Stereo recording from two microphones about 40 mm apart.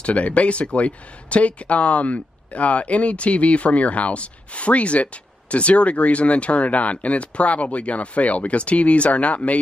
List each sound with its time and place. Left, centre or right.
0.0 s speech: left